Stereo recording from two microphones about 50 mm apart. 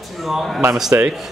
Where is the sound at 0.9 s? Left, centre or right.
Right.